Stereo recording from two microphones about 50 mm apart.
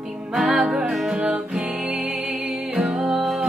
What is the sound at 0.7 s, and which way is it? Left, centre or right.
Music, right.